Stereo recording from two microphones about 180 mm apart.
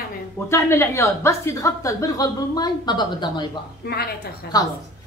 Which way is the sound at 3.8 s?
60° left (ahead or behind).